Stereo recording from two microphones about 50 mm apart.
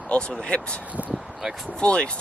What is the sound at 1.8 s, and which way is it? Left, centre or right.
Speech, left.